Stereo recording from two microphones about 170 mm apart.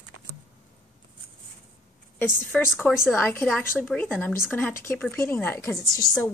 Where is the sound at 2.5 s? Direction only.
5° left (ahead or behind).